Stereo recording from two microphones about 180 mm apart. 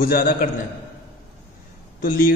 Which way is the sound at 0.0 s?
55° left (ahead or behind).